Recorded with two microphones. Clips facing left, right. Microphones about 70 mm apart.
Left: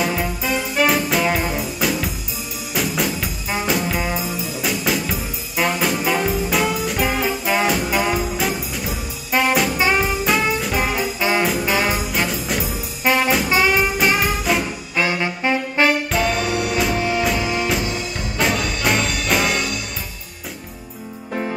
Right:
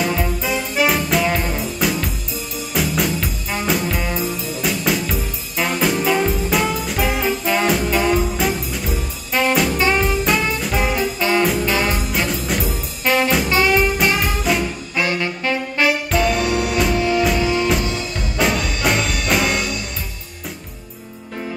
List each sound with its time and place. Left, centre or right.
0.0 s music: centre
9.8 s brass instrument: centre
11.6 s music: centre
15.0 s saxophone: centre
15.8 s music: centre